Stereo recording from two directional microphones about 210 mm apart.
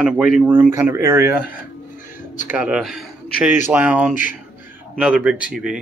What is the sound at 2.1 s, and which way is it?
Music, 40° left (ahead or behind).